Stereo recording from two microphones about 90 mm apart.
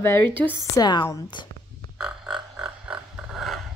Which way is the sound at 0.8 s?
55° left (ahead or behind).